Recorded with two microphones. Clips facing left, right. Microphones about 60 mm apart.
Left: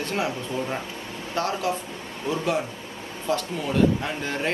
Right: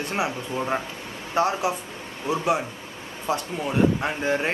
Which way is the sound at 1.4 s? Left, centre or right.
Right.